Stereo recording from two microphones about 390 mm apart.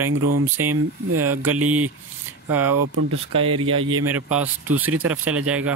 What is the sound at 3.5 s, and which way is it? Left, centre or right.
Speech, right.